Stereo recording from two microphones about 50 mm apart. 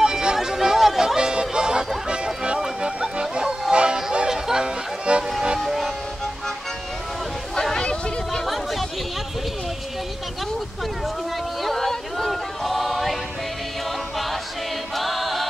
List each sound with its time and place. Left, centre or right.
0.0 s music: centre
2.0 s honk: centre
3.7 s music: centre
5.6 s music: centre
7.7 s a sound: centre
11.6 s choir: centre
15.0 s choir: centre